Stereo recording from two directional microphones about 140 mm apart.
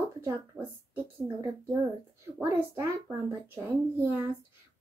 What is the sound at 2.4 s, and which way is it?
Speech, 15° right (ahead or behind).